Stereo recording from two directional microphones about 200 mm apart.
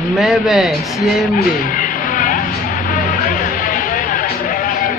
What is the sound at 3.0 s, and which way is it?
Music, 45° left (ahead or behind).